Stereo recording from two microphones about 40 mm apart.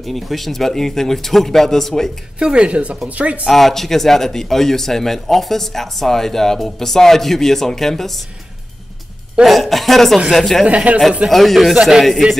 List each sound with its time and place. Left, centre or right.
0.0 s speech: centre
2.5 s speech: right
3.4 s speech: centre
9.4 s a woman's voice: centre
10.7 s speech: right
11.2 s a woman's voice: centre
11.7 s speech: centre